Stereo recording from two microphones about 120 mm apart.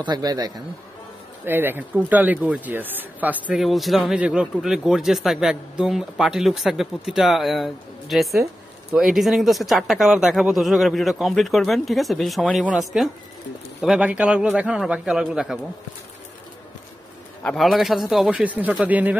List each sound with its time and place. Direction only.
0.0 s a man's voice: 35° right (ahead or behind)
1.4 s speech: 15° right (ahead or behind)
3.6 s speech: centre (ahead or behind)
17.4 s speech: 5° left (ahead or behind); by 19.1 s 10° right (ahead or behind)